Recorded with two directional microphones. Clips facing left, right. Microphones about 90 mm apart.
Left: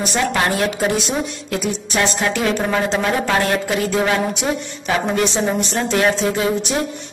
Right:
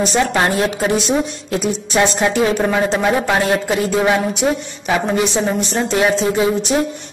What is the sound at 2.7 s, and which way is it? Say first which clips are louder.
A woman's voice: right 3 dB; 15° right (ahead or behind).